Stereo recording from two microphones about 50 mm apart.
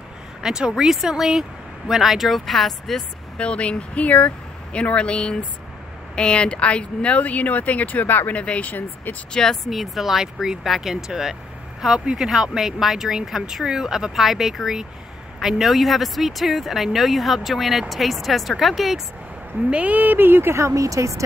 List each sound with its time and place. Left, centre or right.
0.4 s speech: centre
3.3 s speech: left
8.4 s speech: left
9.3 s speech: centre
9.7 s speech: centre
19.7 s speech: right
20.5 s speech: right